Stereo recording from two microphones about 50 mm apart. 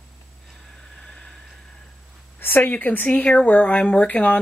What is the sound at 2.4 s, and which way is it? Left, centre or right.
Speech, left.